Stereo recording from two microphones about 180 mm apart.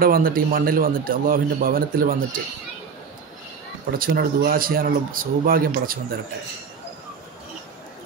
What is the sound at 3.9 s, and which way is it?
A man's voice, 55° right (ahead or behind).